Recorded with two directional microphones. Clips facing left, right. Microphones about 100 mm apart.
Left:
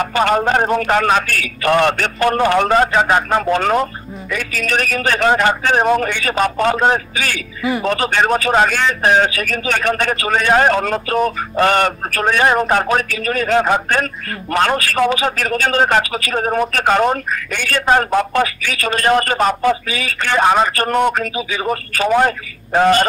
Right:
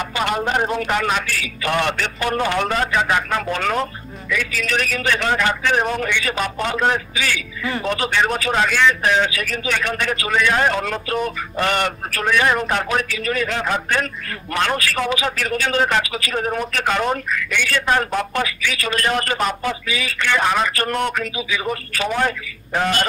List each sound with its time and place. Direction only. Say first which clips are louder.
0.0 s a man's voice: left 6 dB; 40° left (ahead or behind)